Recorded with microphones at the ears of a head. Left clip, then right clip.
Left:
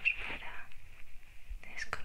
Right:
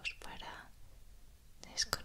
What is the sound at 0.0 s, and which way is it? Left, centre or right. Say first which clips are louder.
Whispering: left 11 dB; left.